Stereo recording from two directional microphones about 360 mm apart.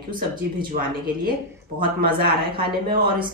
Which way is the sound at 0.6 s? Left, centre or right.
Right.